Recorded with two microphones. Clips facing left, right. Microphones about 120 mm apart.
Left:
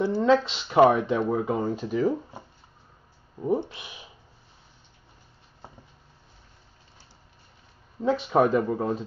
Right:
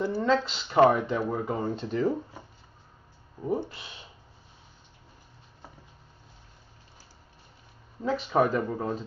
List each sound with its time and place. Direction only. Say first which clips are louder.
0.1 s speech: left 4 dB; 15° left (ahead or behind)
3.3 s speech: left 4 dB; 15° left (ahead or behind)
8.0 s speech: left 3 dB; 10° left (ahead or behind)